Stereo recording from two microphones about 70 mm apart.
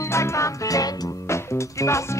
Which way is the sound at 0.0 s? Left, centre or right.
Left.